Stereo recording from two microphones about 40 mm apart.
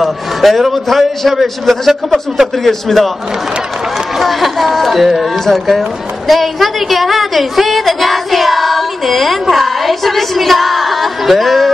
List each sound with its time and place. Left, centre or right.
0.0 s a man's voice: centre
4.2 s a man's voice: centre